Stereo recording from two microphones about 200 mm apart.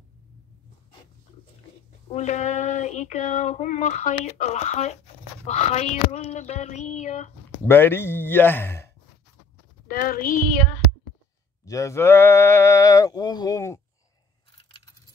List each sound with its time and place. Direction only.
2.1 s speech: 35° left (ahead or behind)
7.6 s sheep: 10° left (ahead or behind)
9.8 s speech: 45° left (ahead or behind)
11.6 s sheep: 15° left (ahead or behind)